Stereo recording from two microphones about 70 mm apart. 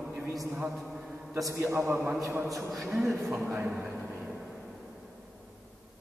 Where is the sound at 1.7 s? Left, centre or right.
Right.